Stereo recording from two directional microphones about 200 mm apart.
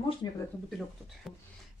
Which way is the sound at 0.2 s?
20° left (ahead or behind).